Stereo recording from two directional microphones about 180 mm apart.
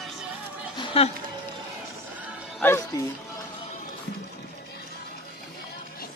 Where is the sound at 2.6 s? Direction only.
15° left (ahead or behind).